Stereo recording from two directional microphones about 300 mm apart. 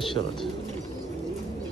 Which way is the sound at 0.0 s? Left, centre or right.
Centre.